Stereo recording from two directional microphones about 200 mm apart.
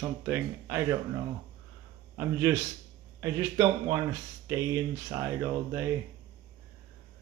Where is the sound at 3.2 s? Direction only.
15° right (ahead or behind).